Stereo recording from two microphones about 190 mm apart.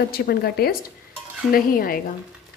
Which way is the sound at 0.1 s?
55° left (ahead or behind).